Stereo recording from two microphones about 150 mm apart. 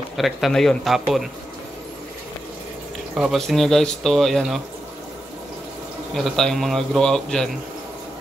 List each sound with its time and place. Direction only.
0.2 s speech: centre (ahead or behind)
3.2 s speech: centre (ahead or behind)
6.1 s speech: 5° left (ahead or behind)